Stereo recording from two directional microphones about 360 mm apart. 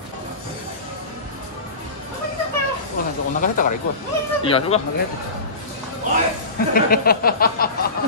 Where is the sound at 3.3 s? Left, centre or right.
Left.